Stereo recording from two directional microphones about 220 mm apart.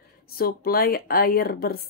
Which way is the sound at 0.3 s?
45° left (ahead or behind).